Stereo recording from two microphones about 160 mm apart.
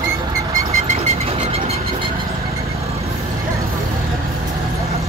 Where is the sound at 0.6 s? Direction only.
40° right (ahead or behind).